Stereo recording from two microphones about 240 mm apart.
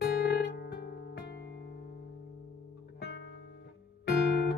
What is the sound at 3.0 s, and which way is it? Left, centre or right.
Music, left.